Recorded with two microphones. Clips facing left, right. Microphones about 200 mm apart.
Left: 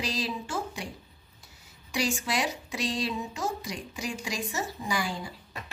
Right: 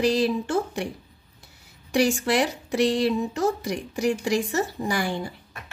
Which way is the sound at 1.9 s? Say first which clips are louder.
Right 8 dB; 60° right (ahead or behind).